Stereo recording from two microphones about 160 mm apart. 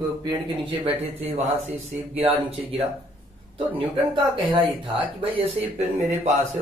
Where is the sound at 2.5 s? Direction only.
35° right (ahead or behind).